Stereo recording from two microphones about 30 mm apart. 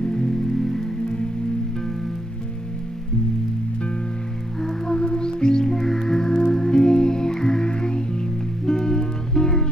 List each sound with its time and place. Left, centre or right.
0.0 s music: left
0.3 s music: centre
4.6 s music: centre
4.9 s music: left